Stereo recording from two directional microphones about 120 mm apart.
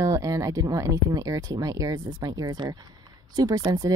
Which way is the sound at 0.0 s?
30° right (ahead or behind).